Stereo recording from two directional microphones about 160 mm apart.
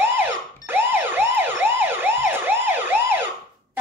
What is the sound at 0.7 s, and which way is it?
Emergency vehicle, 15° right (ahead or behind).